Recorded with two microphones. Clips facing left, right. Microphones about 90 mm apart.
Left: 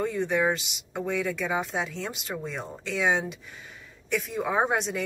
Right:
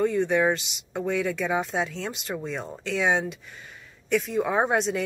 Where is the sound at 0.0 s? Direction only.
5° left (ahead or behind).